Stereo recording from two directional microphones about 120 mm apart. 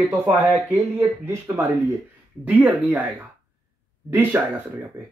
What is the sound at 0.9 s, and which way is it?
Speech, 20° right (ahead or behind).